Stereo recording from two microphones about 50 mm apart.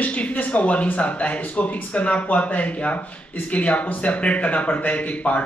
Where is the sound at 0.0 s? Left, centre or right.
Left.